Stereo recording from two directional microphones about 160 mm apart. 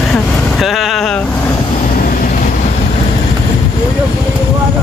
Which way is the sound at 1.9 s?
60° left (ahead or behind).